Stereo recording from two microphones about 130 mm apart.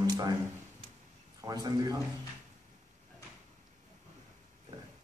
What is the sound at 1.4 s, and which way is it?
Speech, 30° right (ahead or behind).